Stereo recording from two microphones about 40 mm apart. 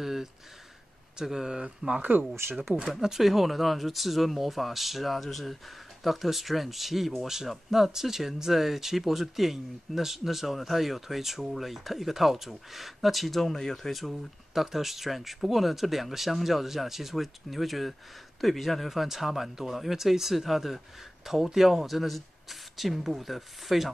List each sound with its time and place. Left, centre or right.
0.0 s a sound: centre
1.1 s speech: centre
2.0 s speech: right
2.9 s speech: centre